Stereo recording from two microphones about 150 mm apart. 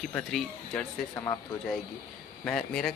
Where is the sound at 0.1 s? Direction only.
5° left (ahead or behind).